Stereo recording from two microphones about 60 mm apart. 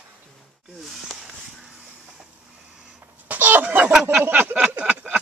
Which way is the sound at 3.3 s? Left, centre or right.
Right.